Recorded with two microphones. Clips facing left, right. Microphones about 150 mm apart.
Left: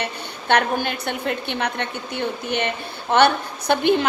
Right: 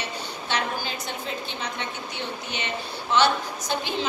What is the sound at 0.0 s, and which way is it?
A woman's voice, 60° left (ahead or behind).